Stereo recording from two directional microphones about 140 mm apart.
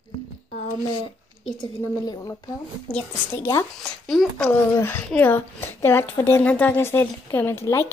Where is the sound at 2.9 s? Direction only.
10° left (ahead or behind).